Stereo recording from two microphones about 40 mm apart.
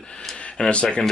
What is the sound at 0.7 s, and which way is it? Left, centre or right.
Speech, left.